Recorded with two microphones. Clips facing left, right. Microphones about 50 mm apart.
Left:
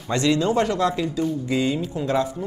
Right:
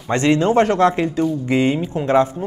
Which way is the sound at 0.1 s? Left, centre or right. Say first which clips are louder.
Right 5 dB; right.